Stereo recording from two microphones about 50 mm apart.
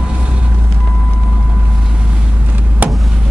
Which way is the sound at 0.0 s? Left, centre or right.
Right.